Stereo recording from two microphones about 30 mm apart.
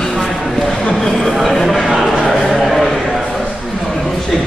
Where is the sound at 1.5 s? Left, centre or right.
Centre.